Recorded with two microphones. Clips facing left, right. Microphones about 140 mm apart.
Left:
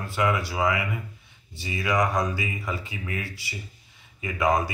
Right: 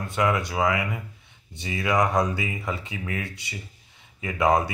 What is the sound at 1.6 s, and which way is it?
Speech, centre (ahead or behind).